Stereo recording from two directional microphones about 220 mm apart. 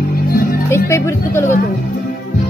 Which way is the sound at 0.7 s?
10° left (ahead or behind).